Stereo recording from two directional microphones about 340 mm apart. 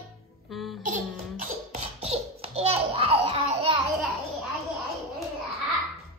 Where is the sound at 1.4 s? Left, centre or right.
Centre.